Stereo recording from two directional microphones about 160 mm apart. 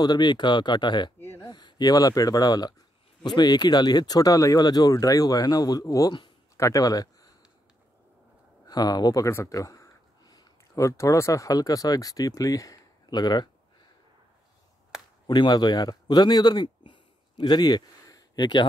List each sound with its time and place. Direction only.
0.0 s speech: 25° left (ahead or behind)
1.2 s a sound: 15° left (ahead or behind)
1.5 s speech: 25° left (ahead or behind)
8.6 s speech: 25° left (ahead or behind)
15.2 s speech: 30° left (ahead or behind)